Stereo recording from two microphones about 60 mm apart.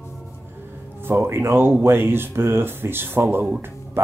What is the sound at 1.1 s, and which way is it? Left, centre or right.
Speech, right.